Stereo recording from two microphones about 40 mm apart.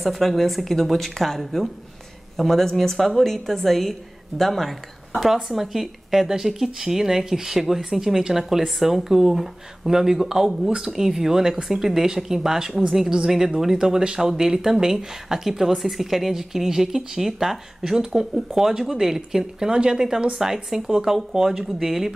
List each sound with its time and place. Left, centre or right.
0.0 s a woman's voice: centre
19.7 s speech: right
20.3 s speech: centre